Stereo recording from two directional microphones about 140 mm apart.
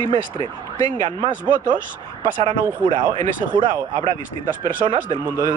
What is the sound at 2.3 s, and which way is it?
Speech, 40° right (ahead or behind).